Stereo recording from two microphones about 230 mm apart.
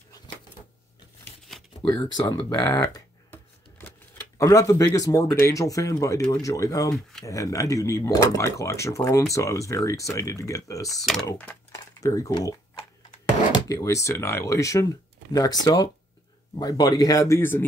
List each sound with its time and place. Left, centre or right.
1.5 s shuffling cards: centre
1.9 s speech: centre
4.4 s speech: centre